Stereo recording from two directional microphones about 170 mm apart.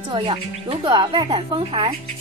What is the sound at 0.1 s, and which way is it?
Speech, 30° right (ahead or behind).